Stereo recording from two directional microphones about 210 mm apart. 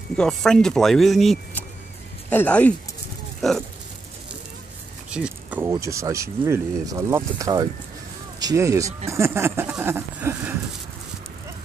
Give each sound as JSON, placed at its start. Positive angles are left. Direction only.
{"t": 0.2, "sound": "speech", "side_deg": 0}
{"t": 5.1, "sound": "speech", "side_deg": -5}